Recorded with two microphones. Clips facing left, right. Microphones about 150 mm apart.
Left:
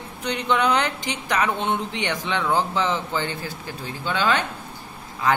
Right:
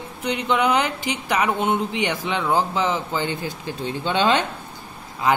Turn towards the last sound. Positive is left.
turn(degrees=-10)  # may be behind; listen again after turning